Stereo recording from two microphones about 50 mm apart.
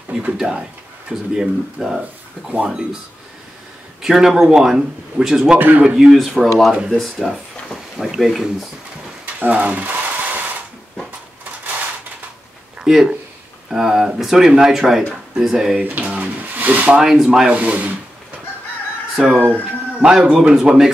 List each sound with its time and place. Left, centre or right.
0.4 s speech: centre
4.0 s speech: centre
5.6 s speech: right
5.9 s speech: centre
6.7 s speech: centre
7.0 s speech: centre
9.2 s a sound: right
12.9 s speech: centre
15.8 s speech: right
16.9 s speech: centre
17.5 s speech: right
19.1 s speech: centre